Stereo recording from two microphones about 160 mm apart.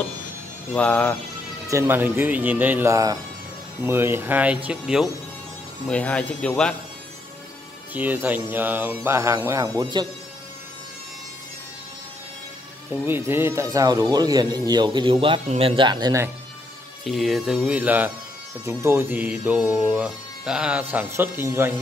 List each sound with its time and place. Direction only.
0.7 s speech: 10° left (ahead or behind)
1.7 s speech: 15° right (ahead or behind)
5.9 s speech: 5° left (ahead or behind)
7.9 s speech: 10° right (ahead or behind)
13.0 s speech: 15° right (ahead or behind)
17.0 s speech: centre (ahead or behind); by 21.7 s 15° right (ahead or behind)